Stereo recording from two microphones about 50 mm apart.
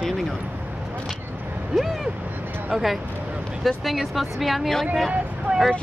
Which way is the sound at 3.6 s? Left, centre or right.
Centre.